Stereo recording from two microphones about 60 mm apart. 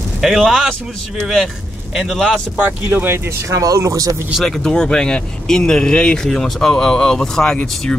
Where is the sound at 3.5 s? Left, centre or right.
Right.